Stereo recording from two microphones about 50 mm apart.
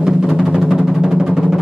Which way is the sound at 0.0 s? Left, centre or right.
Centre.